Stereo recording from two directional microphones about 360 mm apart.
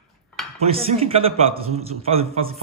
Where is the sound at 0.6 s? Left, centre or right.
Centre.